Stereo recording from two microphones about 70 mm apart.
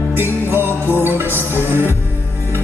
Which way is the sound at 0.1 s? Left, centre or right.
Right.